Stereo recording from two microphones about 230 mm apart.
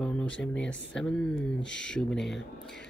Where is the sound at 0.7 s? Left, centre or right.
Centre.